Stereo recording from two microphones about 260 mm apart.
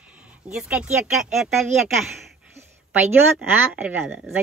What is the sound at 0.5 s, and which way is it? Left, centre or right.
A woman's voice, centre.